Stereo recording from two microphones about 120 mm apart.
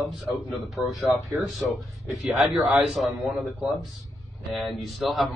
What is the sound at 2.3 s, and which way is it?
Speech, centre (ahead or behind).